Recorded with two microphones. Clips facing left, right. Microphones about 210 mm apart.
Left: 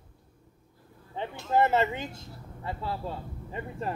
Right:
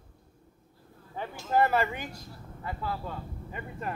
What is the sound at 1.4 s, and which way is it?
Speech, 20° left (ahead or behind).